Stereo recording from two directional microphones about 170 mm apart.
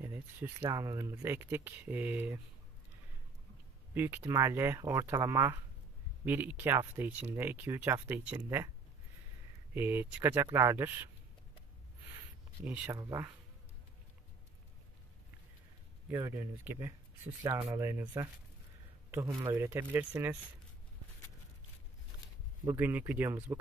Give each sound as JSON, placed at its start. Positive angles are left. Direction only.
{"t": 0.0, "sound": "speech", "side_deg": -15}
{"t": 3.9, "sound": "speech", "side_deg": -10}
{"t": 9.8, "sound": "speech", "side_deg": -10}
{"t": 12.6, "sound": "speech", "side_deg": -10}
{"t": 16.1, "sound": "speech", "side_deg": -15}
{"t": 22.7, "sound": "speech", "side_deg": -10}